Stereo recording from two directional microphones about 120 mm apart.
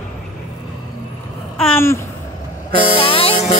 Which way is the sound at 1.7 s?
20° left (ahead or behind).